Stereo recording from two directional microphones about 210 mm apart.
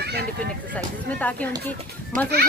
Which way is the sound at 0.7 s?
5° left (ahead or behind).